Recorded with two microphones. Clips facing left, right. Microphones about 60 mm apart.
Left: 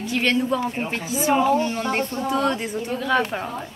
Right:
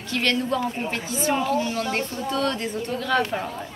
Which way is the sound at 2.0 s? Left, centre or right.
Left.